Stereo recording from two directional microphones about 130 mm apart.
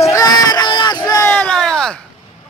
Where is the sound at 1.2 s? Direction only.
10° left (ahead or behind).